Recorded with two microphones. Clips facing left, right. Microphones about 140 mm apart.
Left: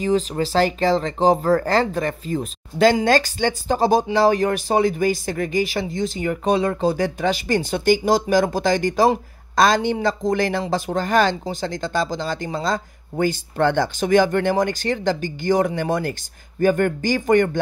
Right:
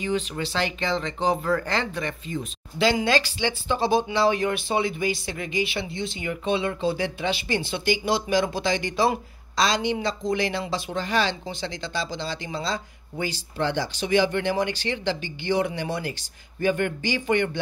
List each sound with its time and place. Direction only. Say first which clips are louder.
0.0 s speech: left 7 dB; 40° left (ahead or behind)